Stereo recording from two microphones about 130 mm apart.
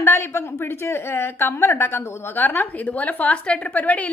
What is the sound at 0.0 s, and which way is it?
A woman's voice, 20° left (ahead or behind).